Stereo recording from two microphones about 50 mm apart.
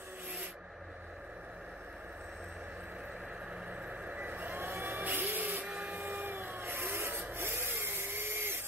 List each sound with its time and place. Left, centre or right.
4.0 s vehicle: right
5.9 s printer: right
7.7 s a sound: right